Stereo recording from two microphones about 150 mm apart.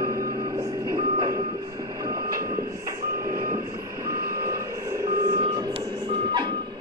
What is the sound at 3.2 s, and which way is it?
Reversing beeps, 75° right (ahead or behind).